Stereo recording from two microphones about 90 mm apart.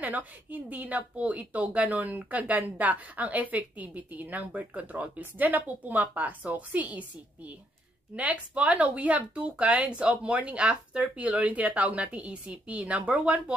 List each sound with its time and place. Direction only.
0.0 s speech: 15° right (ahead or behind)